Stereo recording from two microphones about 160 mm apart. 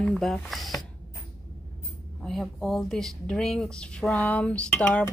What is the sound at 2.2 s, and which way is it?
Speech, centre (ahead or behind).